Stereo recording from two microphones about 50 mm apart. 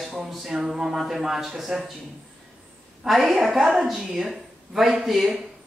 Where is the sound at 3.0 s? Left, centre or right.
Centre.